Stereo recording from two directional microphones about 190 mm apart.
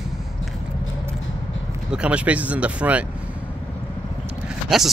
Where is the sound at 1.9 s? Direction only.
5° right (ahead or behind).